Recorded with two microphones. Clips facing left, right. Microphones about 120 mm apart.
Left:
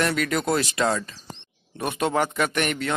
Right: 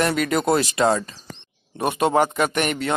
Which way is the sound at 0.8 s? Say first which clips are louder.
Right 4 dB; 25° right (ahead or behind).